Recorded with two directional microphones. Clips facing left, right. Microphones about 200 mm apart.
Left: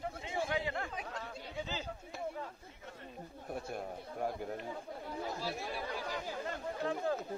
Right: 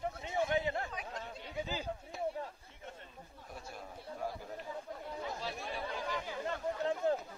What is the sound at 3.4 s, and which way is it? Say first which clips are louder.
Chatter: left 8 dB; 55° left (ahead or behind).